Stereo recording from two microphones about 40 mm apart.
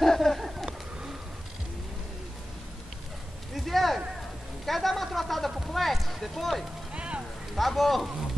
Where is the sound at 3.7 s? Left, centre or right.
Centre.